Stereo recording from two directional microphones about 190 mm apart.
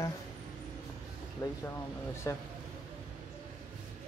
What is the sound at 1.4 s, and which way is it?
Speech, 15° left (ahead or behind).